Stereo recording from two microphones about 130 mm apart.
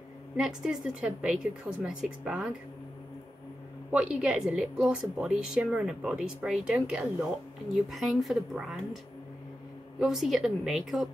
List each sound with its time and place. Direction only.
0.4 s a woman's voice: 5° right (ahead or behind)
3.9 s a woman's voice: 10° right (ahead or behind)